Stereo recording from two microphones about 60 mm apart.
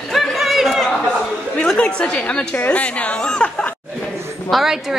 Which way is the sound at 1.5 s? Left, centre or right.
Centre.